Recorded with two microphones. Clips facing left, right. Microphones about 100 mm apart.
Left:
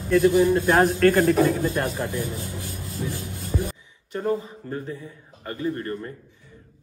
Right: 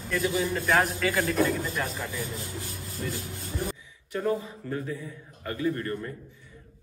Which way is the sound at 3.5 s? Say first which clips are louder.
Left 5 dB; 90° left.